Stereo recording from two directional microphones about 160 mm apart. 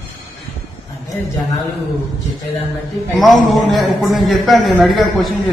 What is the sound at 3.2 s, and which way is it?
A man's voice, centre (ahead or behind).